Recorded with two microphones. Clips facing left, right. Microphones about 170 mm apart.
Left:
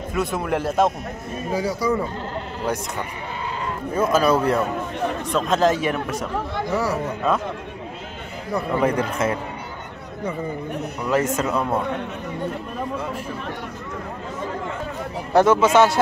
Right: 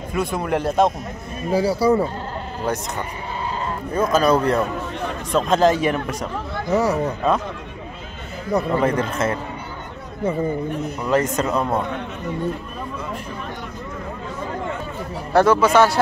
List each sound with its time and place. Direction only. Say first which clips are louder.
0.1 s speech: right 1 dB; centre (ahead or behind)
1.5 s speech: right 5 dB; 35° right (ahead or behind)
3.9 s speech: right 1 dB; 5° left (ahead or behind)
6.7 s speech: right 5 dB; 20° right (ahead or behind)
8.7 s speech: right 1 dB; 10° left (ahead or behind)
11.1 s speech: right 1 dB; 5° left (ahead or behind)
15.3 s speech: even; 20° left (ahead or behind)